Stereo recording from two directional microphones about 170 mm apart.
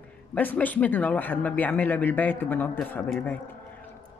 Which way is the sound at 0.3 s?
10° left (ahead or behind).